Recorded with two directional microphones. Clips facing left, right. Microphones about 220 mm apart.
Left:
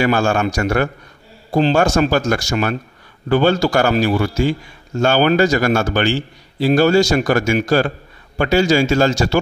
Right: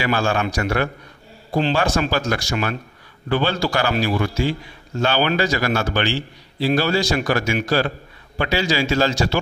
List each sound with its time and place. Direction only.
0.0 s a man's voice: 45° left (ahead or behind)